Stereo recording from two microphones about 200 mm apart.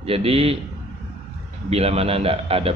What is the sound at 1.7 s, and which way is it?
Speech, 30° right (ahead or behind).